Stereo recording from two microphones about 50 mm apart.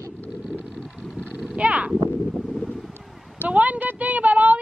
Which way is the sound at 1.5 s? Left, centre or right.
Right.